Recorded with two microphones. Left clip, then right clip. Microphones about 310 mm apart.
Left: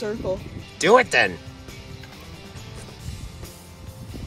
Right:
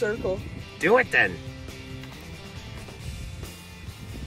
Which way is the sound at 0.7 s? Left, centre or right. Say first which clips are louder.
Left 4 dB; centre.